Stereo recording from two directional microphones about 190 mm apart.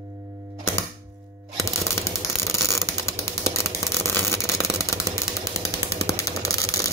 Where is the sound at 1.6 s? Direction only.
15° left (ahead or behind).